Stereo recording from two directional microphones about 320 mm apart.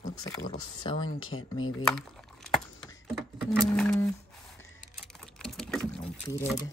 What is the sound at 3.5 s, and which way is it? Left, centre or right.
Speech, centre.